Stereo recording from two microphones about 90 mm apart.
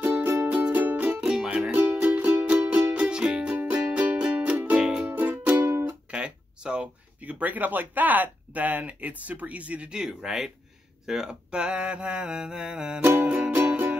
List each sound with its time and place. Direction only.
0.0 s music: 20° right (ahead or behind)
1.2 s music: 10° right (ahead or behind)
1.8 s music: 20° right (ahead or behind)
6.0 s speech: 10° right (ahead or behind)
11.1 s mantra: 10° right (ahead or behind)